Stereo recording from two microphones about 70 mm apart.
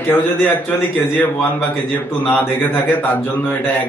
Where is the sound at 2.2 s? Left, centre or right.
Left.